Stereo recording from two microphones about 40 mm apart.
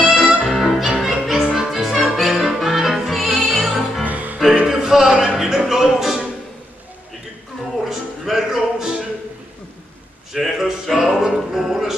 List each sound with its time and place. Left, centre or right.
0.0 s music: centre
0.7 s music: centre
4.0 s music: right
4.6 s music: centre
5.1 s a sound: centre
5.9 s music: centre
7.9 s music: centre
10.3 s a sound: centre
11.1 s music: centre